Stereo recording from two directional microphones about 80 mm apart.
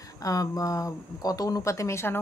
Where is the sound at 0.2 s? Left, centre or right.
Left.